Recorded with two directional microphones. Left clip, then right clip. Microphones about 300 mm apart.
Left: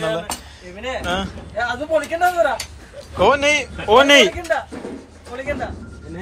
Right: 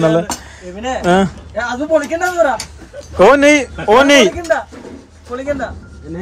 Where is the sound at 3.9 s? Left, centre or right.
Centre.